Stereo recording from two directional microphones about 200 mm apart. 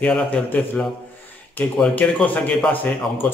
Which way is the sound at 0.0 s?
5° left (ahead or behind).